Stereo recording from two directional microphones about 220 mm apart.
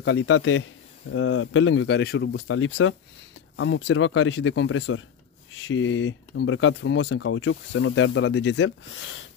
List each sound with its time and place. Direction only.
0.0 s speech: 55° left (ahead or behind)
2.4 s speech: 65° left (ahead or behind)